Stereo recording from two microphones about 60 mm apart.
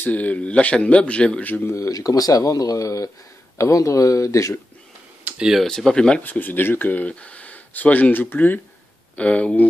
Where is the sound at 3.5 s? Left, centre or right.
Left.